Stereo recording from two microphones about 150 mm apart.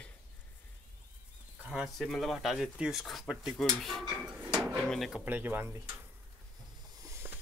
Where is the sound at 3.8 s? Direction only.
Centre (ahead or behind).